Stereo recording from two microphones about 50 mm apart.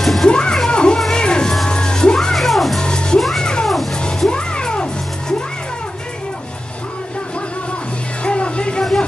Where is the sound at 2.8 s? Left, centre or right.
Centre.